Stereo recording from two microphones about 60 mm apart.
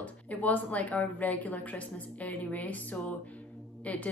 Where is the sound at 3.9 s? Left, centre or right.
Left.